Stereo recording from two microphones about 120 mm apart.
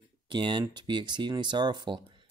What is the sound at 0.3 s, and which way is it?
Speech, 40° right (ahead or behind).